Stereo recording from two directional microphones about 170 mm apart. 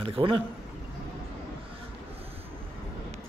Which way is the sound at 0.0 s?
30° right (ahead or behind).